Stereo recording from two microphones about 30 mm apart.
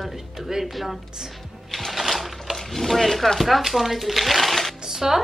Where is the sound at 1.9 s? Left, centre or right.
Centre.